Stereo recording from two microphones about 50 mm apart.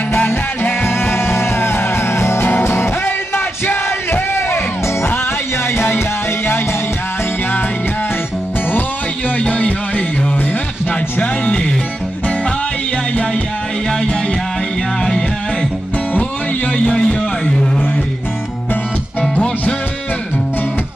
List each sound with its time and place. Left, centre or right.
0.7 s music: left
9.4 s a sound: left
11.1 s music: left
16.7 s music: centre
19.3 s music: left